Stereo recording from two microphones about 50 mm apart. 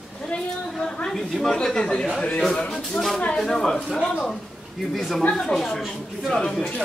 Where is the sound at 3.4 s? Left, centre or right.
Centre.